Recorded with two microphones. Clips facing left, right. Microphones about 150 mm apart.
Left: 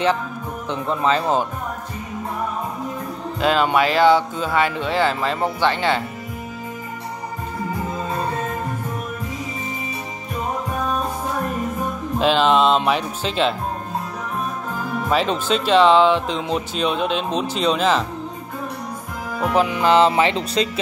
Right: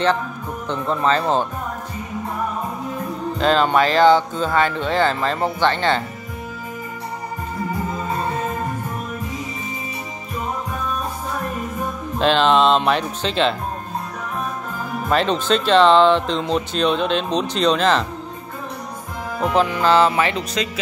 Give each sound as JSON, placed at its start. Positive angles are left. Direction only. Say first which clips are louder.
{"t": 0.7, "sound": "speech", "louder": "right 1 dB", "side_deg": 5}
{"t": 3.3, "sound": "speech", "louder": "right 1 dB", "side_deg": 5}
{"t": 12.2, "sound": "speech", "louder": "right 1 dB", "side_deg": 5}
{"t": 15.0, "sound": "speech", "louder": "right 2 dB", "side_deg": 5}
{"t": 19.4, "sound": "speech", "louder": "even", "side_deg": 10}